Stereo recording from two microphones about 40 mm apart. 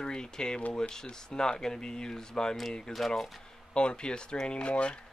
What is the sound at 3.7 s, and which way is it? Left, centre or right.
Speech, left.